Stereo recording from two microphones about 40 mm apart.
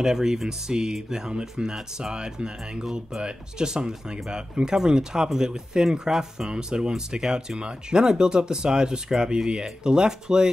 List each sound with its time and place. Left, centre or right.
0.0 s speech: centre